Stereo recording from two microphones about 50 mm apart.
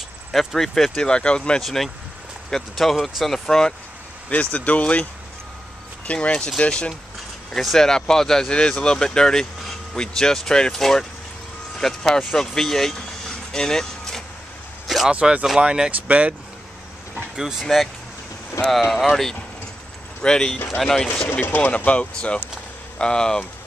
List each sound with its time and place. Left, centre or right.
0.3 s speech: centre
1.0 s speech: centre
1.6 s speech: centre
3.4 s speech: centre
4.3 s speech: left
6.1 s speech: centre
13.5 s vehicle: centre
15.0 s speech: right
15.9 s speech: right
17.1 s vehicle: centre
18.7 s speech: centre
21.3 s speech: left; by 23.4 s centre